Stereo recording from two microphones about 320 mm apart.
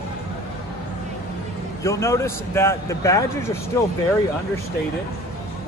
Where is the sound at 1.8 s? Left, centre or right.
Centre.